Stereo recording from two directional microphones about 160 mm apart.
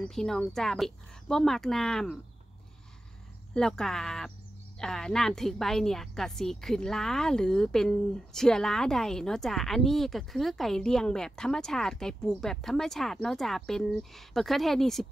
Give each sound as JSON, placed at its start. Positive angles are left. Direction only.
{"t": 0.0, "sound": "a woman's voice", "side_deg": 5}
{"t": 3.5, "sound": "a woman's voice", "side_deg": 5}